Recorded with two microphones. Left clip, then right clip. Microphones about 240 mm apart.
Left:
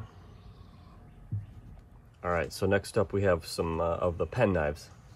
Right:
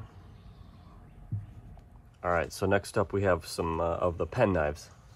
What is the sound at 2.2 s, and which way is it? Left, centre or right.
Speech, right.